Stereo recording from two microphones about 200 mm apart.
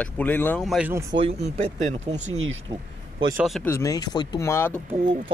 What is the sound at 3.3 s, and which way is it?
Speech, centre (ahead or behind).